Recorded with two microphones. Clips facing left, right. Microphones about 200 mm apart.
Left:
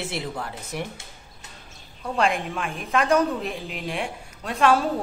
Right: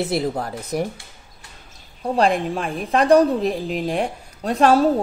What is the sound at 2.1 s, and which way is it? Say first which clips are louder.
A woman's voice: right 5 dB; 35° right (ahead or behind).